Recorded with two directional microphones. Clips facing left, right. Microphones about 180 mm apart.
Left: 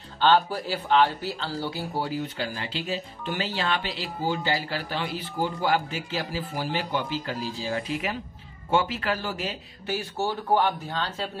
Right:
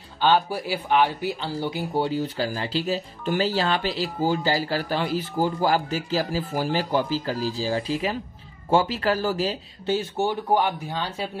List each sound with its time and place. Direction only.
0.2 s speech: 10° right (ahead or behind)